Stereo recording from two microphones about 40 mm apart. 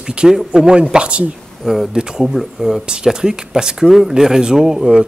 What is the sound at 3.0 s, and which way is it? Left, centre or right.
Speech, centre.